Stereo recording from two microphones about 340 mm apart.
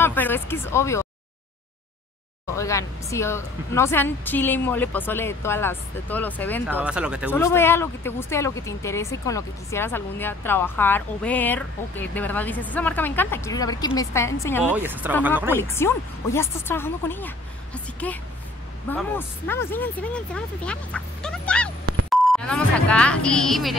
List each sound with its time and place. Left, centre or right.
0.0 s speech: centre
2.5 s speech: centre
14.6 s speech: centre
15.5 s speech: centre